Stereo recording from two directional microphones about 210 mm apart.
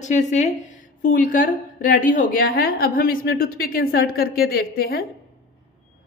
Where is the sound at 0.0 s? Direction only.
35° left (ahead or behind).